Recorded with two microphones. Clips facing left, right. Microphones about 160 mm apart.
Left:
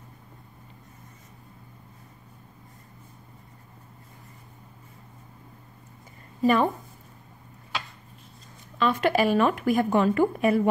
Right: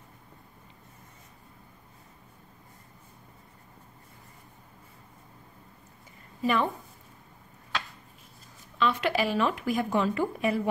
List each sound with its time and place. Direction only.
6.4 s a woman's voice: 40° left (ahead or behind)
8.7 s a woman's voice: 45° left (ahead or behind)